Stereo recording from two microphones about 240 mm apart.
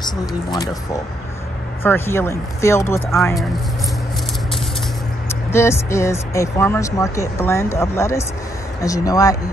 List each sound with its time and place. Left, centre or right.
1.8 s speech: centre
5.3 s speech: centre